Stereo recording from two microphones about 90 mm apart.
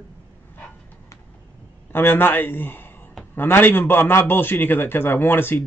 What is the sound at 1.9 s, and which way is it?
Speech, 25° left (ahead or behind).